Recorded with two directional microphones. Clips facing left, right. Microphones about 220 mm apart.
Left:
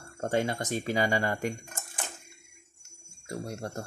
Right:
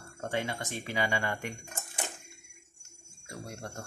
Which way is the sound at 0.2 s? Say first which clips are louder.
Left 5 dB; 40° left (ahead or behind).